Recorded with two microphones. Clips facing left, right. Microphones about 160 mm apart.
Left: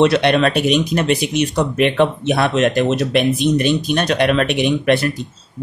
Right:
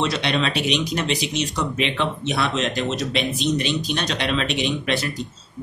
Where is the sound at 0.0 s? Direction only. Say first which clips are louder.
Left 9 dB; 60° left (ahead or behind).